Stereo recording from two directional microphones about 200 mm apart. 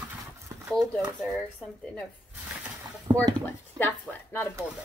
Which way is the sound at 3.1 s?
20° right (ahead or behind).